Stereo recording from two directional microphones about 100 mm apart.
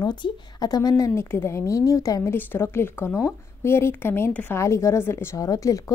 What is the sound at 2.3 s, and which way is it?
A woman's voice, 25° left (ahead or behind).